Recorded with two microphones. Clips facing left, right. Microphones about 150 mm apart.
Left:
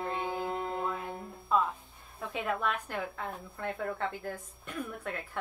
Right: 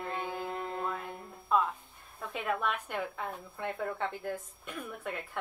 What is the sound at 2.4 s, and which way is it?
Speech, centre (ahead or behind).